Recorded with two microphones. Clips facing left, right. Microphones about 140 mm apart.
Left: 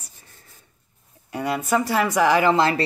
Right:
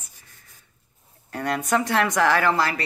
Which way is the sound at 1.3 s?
10° left (ahead or behind).